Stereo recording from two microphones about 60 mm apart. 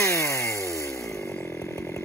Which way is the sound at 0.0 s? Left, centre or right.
Left.